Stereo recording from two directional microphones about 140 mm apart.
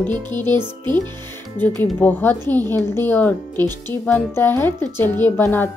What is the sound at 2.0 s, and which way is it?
Speech, 15° left (ahead or behind).